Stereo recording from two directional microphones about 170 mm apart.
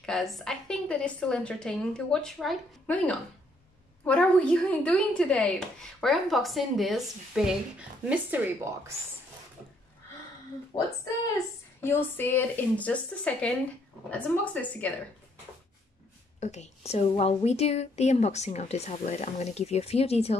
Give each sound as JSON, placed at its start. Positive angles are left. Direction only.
{"t": 0.0, "sound": "a woman's voice", "side_deg": 0}
{"t": 10.7, "sound": "a woman's voice", "side_deg": 25}
{"t": 11.3, "sound": "speech", "side_deg": 15}
{"t": 16.3, "sound": "a woman's voice", "side_deg": 40}